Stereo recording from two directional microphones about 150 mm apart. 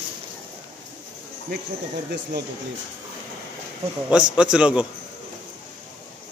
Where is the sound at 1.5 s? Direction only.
90° right.